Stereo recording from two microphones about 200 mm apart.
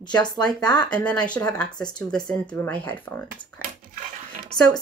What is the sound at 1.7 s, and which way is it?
Speech, 20° left (ahead or behind).